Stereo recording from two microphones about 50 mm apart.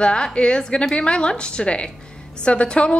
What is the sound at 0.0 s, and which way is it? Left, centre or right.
A woman's voice, centre.